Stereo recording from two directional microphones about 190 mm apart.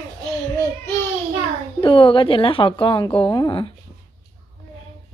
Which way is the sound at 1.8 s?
25° left (ahead or behind).